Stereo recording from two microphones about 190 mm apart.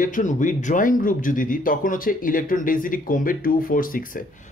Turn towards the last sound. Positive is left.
turn(degrees=45)  # may be behind; listen again after turning